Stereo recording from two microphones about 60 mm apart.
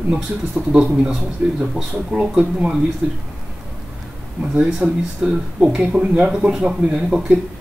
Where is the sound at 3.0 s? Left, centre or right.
Centre.